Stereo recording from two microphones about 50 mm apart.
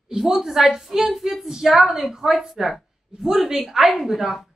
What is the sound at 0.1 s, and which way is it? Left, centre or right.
A woman's voice, centre.